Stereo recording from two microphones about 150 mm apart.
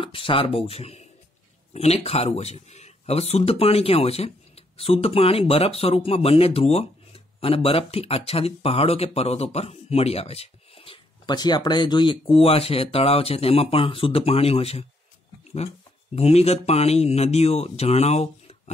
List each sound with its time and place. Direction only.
0.0 s speech: 35° left (ahead or behind)
16.2 s speech: 45° left (ahead or behind)